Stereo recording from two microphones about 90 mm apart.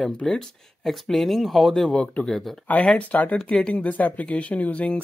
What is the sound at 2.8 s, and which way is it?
Speech, 15° left (ahead or behind).